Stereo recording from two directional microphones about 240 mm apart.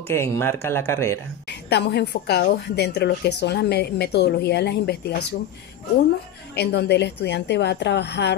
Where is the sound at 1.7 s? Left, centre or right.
Left.